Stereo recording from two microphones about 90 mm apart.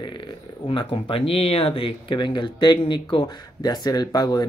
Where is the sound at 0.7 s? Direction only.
70° left (ahead or behind); by 4.5 s 45° left (ahead or behind).